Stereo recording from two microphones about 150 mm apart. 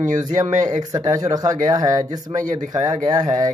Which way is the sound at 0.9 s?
25° right (ahead or behind).